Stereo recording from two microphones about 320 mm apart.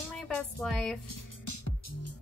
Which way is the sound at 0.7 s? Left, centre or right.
Centre.